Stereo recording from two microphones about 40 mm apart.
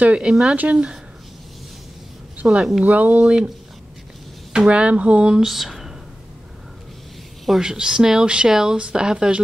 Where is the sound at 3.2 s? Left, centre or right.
Right.